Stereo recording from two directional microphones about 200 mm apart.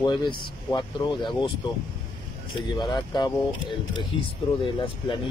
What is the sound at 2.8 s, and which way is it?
Speech, 20° left (ahead or behind).